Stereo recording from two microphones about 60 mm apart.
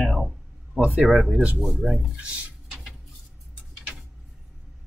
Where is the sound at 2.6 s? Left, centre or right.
Centre.